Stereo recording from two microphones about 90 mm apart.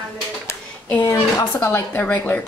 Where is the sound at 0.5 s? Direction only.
20° left (ahead or behind).